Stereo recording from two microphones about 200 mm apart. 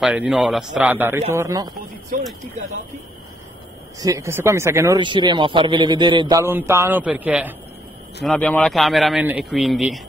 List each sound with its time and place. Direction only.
0.0 s a man's voice: 5° right (ahead or behind)
2.1 s speech: 40° right (ahead or behind)
4.0 s speech: 15° right (ahead or behind)
8.2 s a man's voice: 5° left (ahead or behind)